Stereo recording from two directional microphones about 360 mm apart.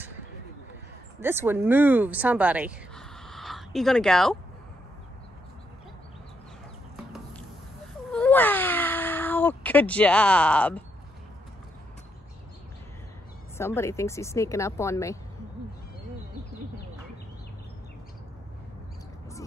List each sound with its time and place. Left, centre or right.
1.2 s speech: centre
8.1 s cat: centre
13.6 s speech: centre